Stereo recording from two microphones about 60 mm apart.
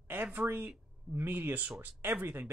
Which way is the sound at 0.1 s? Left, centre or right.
Right.